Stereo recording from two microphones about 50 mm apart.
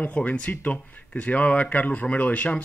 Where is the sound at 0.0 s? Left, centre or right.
Left.